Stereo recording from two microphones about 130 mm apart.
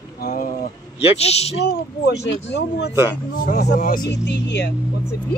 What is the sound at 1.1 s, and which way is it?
Speech, 55° left (ahead or behind).